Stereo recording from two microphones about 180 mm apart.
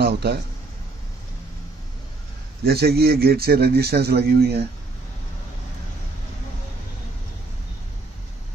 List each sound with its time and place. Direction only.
0.0 s speech: 65° right (ahead or behind)
2.6 s a man's voice: 60° right (ahead or behind)